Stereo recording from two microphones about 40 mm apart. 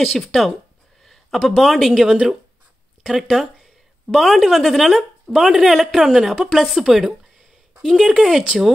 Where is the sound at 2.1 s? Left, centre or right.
Centre.